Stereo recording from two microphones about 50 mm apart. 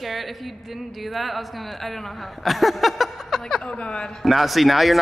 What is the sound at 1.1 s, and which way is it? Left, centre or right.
Speech, centre.